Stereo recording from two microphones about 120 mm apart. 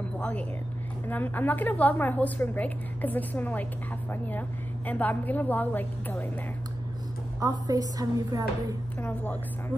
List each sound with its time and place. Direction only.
0.2 s a woman's voice: 15° left (ahead or behind)
7.3 s a woman's voice: 30° right (ahead or behind)
9.0 s a woman's voice: 15° left (ahead or behind)